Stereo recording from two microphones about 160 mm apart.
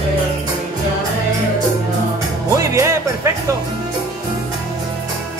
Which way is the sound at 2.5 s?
20° right (ahead or behind).